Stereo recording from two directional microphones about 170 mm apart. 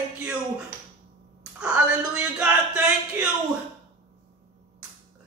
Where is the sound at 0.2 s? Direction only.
5° right (ahead or behind).